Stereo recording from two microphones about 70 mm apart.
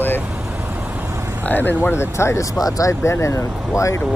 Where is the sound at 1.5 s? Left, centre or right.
Left.